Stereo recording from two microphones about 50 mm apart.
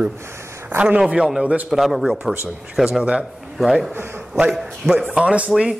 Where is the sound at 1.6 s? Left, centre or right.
Centre.